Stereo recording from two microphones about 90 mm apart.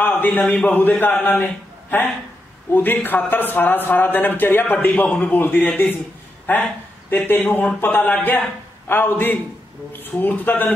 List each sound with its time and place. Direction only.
0.0 s a sound: 20° left (ahead or behind)
0.5 s a man's voice: 10° left (ahead or behind)
0.7 s speech: 20° left (ahead or behind)